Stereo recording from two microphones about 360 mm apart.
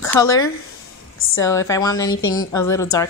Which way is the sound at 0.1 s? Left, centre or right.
Centre.